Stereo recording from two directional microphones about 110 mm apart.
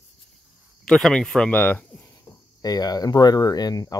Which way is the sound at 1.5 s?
15° left (ahead or behind).